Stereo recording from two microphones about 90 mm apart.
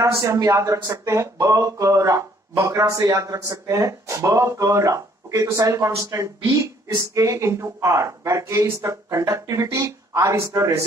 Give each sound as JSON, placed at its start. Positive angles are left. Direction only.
{"t": 0.3, "sound": "speech", "side_deg": -35}